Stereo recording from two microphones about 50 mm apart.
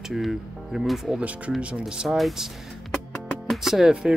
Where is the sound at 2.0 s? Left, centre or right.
Centre.